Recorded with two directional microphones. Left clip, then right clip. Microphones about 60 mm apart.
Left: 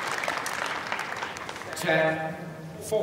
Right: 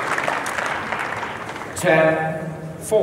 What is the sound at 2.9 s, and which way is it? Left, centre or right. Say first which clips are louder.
Speech: right 9 dB; right.